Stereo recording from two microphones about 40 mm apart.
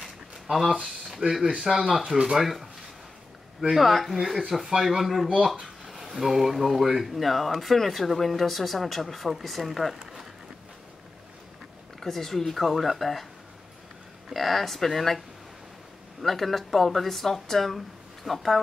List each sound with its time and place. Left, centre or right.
1.6 s speech: centre
2.0 s speech: right
2.3 s speech: centre
3.7 s speech: centre
12.0 s speech: centre
14.3 s speech: centre